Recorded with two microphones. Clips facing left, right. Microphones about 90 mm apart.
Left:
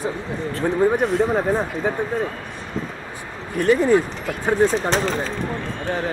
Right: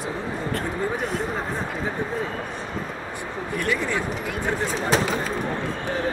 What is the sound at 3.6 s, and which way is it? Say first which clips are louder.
Speech: left 11 dB; 45° left (ahead or behind).